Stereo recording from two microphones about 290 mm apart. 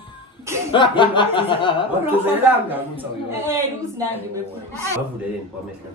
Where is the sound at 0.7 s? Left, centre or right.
Centre.